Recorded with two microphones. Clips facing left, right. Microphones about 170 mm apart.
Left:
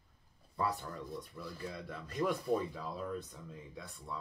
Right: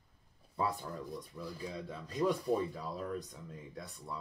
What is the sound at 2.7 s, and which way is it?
Speech, 5° right (ahead or behind).